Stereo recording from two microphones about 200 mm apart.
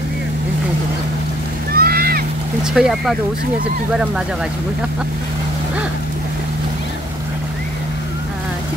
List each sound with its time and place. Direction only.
1.7 s boat: 50° right (ahead or behind)
2.7 s speech: centre (ahead or behind)